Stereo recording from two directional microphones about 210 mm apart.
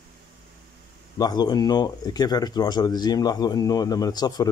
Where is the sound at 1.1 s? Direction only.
20° left (ahead or behind).